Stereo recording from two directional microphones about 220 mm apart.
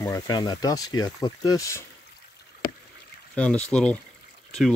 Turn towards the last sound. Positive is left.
turn(degrees=5)  # may be behind; listen again after turning